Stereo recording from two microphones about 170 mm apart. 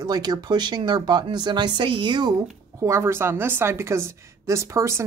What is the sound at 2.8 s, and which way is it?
A woman's voice, 15° right (ahead or behind).